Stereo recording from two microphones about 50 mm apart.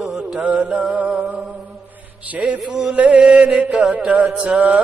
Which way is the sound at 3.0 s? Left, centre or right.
Right.